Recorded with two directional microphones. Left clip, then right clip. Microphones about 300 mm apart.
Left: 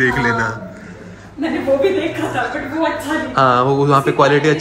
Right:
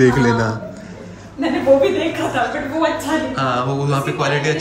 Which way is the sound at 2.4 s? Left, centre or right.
Centre.